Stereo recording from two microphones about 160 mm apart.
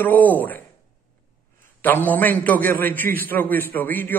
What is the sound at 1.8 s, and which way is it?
Speech, 10° left (ahead or behind).